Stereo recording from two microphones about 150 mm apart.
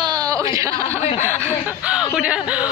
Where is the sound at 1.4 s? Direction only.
10° right (ahead or behind).